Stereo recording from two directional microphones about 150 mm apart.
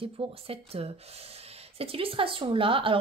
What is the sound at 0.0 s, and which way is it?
A woman's voice, 40° right (ahead or behind).